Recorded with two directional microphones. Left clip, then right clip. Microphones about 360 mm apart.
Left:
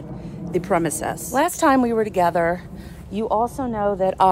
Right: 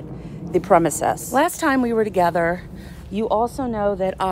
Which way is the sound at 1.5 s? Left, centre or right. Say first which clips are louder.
Left 2 dB; centre.